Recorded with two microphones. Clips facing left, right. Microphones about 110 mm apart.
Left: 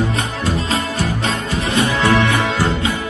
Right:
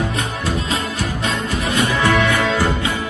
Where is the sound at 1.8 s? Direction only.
15° left (ahead or behind).